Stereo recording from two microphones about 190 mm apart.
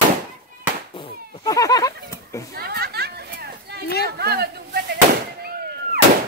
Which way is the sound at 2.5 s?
55° right (ahead or behind).